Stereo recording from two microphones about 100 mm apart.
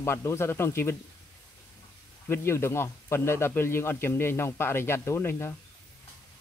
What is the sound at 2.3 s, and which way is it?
Speech, 25° left (ahead or behind).